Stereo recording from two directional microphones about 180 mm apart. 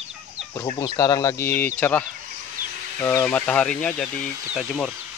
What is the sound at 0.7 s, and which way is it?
Speech, 20° left (ahead or behind).